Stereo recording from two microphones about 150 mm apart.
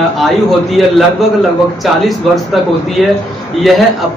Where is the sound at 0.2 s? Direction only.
Centre (ahead or behind).